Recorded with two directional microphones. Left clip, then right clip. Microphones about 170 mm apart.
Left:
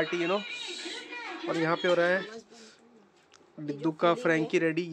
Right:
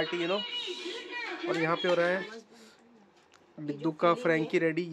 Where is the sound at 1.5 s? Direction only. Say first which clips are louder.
Left 2 dB; 10° left (ahead or behind).